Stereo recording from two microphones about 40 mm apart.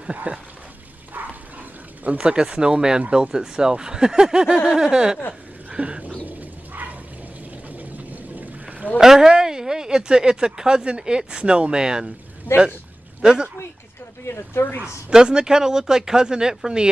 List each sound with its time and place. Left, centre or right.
0.0 s speech: right
2.1 s speech: right
5.7 s a sound: right
6.2 s bird: right
7.7 s a sound: right
8.9 s speech: centre
13.2 s speech: centre
14.3 s speech: left
15.0 s speech: right